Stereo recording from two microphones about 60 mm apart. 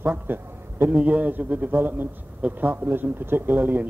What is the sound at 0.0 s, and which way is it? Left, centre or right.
A man's voice, right.